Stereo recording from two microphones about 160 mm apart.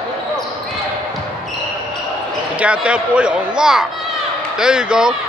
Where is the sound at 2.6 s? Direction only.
5° right (ahead or behind).